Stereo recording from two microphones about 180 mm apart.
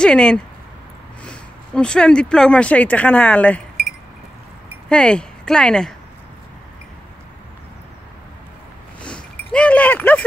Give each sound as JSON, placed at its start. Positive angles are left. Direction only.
{"t": 0.0, "sound": "speech", "side_deg": 5}
{"t": 4.8, "sound": "speech", "side_deg": 5}
{"t": 9.0, "sound": "a sound", "side_deg": 5}